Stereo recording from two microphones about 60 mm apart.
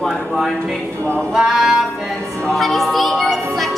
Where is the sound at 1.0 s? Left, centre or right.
Left.